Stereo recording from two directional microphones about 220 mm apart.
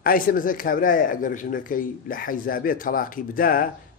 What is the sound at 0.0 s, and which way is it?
Speech, 40° left (ahead or behind).